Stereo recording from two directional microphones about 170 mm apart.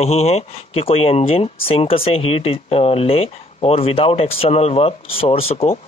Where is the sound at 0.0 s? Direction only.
40° left (ahead or behind).